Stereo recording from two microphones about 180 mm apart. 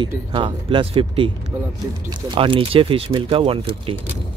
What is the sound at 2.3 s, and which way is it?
Speech, 30° right (ahead or behind).